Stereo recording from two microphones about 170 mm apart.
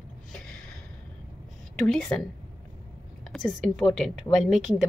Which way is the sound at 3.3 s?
Centre (ahead or behind).